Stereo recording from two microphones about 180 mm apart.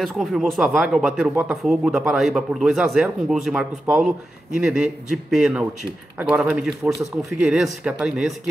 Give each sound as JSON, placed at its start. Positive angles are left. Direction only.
{"t": 0.0, "sound": "speech", "side_deg": 0}